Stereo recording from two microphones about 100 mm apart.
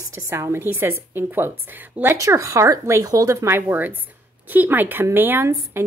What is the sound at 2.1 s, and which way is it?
A woman's voice, 30° right (ahead or behind).